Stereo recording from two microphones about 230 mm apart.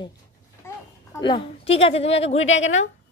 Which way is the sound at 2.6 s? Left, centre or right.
Left.